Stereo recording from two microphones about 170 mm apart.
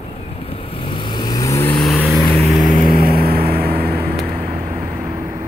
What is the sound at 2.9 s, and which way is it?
Vehicle, 60° right (ahead or behind).